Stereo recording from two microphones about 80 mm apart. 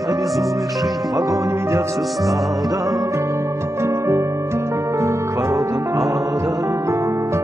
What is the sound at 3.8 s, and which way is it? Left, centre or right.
Music, right.